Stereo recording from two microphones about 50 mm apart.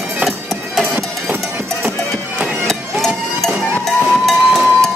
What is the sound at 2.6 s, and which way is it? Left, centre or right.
Music, centre.